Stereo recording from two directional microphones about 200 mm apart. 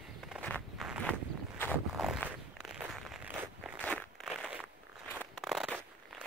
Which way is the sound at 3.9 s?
5° right (ahead or behind).